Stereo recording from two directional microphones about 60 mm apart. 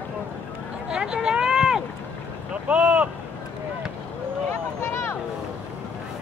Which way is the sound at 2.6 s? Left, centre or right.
Right.